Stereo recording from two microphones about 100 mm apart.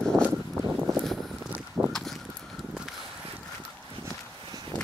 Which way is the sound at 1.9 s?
5° left (ahead or behind).